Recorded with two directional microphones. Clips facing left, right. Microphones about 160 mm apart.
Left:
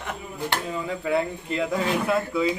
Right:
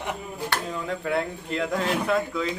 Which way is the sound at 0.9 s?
Centre (ahead or behind).